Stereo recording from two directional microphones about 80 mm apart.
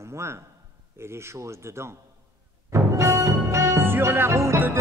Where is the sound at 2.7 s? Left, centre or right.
Right.